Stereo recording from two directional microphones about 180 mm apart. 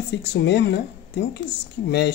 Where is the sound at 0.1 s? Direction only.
75° left (ahead or behind).